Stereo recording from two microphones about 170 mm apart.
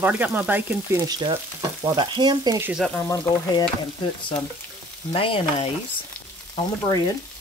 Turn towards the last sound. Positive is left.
turn(degrees=25)  # may be behind; listen again after turning